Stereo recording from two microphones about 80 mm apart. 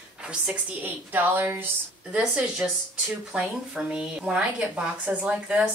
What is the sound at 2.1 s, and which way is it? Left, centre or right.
Speech, centre.